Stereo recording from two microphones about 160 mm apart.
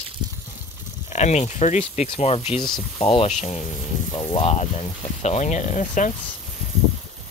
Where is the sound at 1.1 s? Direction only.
45° left (ahead or behind).